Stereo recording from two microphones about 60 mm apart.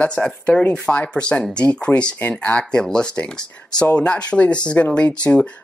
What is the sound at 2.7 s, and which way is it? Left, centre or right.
Speech, centre.